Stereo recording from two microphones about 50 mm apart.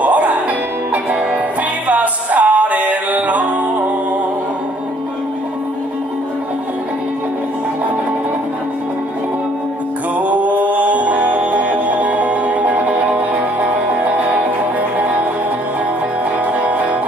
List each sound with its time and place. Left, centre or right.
0.0 s music: right
1.9 s music: right
10.1 s music: right